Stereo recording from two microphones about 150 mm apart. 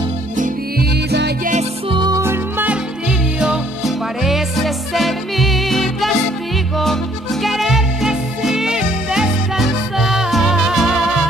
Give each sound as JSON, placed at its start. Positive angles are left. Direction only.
{"t": 0.4, "sound": "music", "side_deg": -80}
{"t": 1.9, "sound": "music", "side_deg": -30}
{"t": 2.2, "sound": "music", "side_deg": -15}